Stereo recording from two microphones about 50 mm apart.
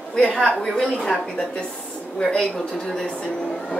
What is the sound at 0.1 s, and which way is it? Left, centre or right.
Speech, centre.